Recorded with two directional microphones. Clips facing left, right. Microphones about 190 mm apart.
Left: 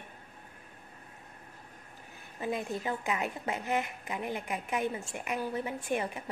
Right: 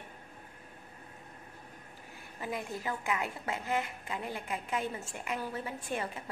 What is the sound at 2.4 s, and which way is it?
A woman's voice, 20° left (ahead or behind).